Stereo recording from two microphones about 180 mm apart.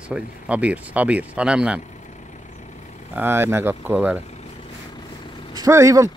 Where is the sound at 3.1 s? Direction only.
10° right (ahead or behind).